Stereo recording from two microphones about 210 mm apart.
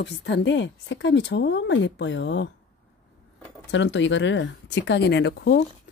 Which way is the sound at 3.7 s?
60° left (ahead or behind).